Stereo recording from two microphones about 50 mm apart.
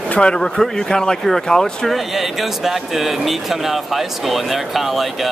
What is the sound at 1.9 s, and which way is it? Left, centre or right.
Speech, centre.